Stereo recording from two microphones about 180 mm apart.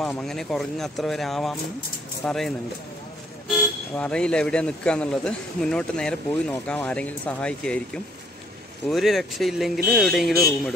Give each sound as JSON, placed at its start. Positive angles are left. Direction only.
{"t": 0.0, "sound": "a man's voice", "side_deg": 0}
{"t": 3.9, "sound": "a man's voice", "side_deg": 5}